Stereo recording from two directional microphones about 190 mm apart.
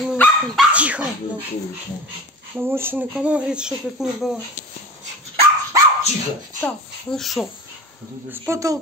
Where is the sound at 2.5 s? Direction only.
10° right (ahead or behind).